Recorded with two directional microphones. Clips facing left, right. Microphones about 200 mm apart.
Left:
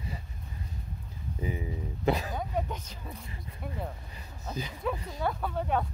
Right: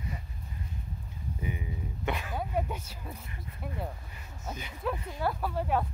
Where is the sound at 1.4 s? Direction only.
30° left (ahead or behind).